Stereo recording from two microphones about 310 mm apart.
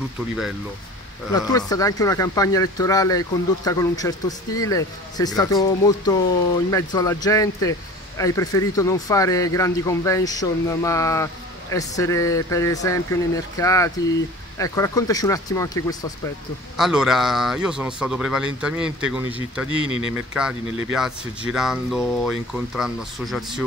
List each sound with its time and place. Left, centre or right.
1.7 s speech: centre
16.7 s speech: centre
19.9 s speech: centre
20.3 s speech: centre